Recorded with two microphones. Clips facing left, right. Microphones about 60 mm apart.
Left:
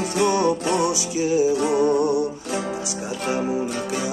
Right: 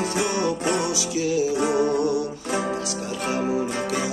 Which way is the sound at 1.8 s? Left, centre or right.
Left.